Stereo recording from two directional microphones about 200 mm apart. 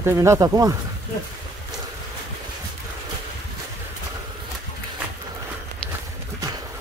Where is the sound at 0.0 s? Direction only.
15° right (ahead or behind).